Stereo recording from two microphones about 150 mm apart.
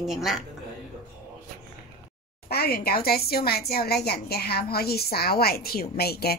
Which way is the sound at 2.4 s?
90° left.